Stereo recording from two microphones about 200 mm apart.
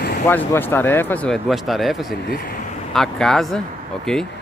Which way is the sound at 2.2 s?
45° left (ahead or behind).